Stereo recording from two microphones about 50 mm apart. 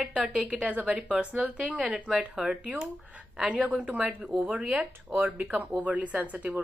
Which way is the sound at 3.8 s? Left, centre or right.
Right.